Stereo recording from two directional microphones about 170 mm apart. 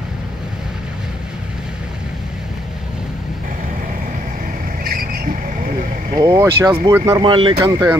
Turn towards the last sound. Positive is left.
turn(degrees=-20)  # may be behind; listen again after turning